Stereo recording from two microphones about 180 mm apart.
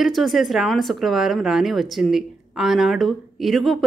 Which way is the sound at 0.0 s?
Centre (ahead or behind).